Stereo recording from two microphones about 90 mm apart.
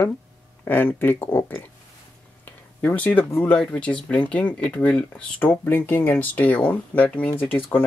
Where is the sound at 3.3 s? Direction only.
15° left (ahead or behind).